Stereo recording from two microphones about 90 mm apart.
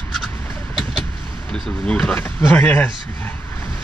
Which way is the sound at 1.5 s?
10° left (ahead or behind).